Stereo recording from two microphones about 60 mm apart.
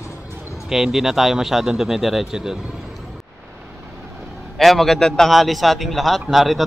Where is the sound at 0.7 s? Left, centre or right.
Centre.